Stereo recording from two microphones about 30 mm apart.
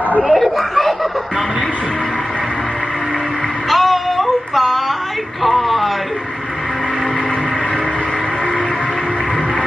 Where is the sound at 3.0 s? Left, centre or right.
Left.